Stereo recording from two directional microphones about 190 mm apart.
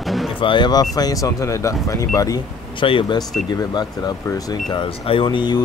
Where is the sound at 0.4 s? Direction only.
25° left (ahead or behind).